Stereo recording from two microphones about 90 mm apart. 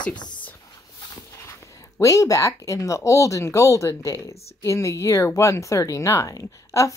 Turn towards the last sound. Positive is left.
turn(degrees=35)  # may be behind; listen again after turning